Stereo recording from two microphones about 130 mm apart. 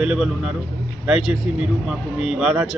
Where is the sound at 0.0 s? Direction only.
5° right (ahead or behind).